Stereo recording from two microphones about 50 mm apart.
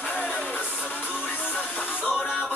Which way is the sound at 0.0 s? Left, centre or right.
Left.